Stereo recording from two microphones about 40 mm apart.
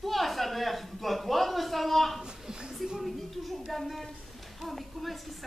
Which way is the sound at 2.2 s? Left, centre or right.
Centre.